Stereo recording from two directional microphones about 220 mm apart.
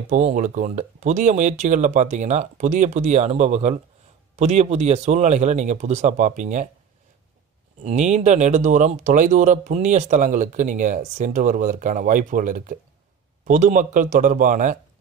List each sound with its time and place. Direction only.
0.1 s speech: 35° right (ahead or behind)
7.8 s speech: 30° right (ahead or behind)